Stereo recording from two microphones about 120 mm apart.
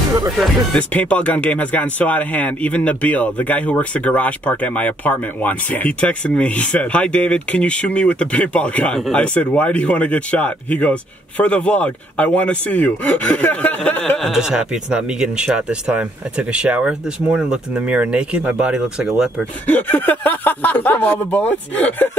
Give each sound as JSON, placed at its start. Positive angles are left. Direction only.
{"t": 0.7, "sound": "speech", "side_deg": 10}
{"t": 14.2, "sound": "speech", "side_deg": -5}
{"t": 19.6, "sound": "speech", "side_deg": 15}